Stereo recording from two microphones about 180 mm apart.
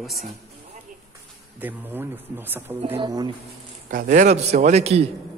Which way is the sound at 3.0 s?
25° right (ahead or behind).